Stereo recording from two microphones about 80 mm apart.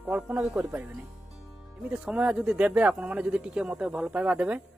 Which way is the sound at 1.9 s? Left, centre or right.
Centre.